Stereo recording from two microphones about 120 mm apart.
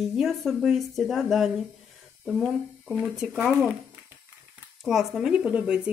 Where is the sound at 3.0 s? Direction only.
5° right (ahead or behind).